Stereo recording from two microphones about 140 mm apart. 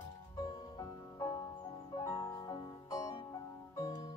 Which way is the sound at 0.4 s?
25° left (ahead or behind).